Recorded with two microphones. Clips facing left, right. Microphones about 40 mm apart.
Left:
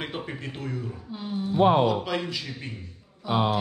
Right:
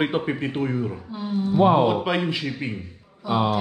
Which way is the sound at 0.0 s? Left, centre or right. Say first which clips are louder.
Right 10 dB; right.